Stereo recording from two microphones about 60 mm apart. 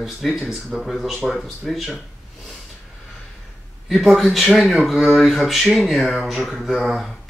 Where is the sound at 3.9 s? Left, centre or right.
Centre.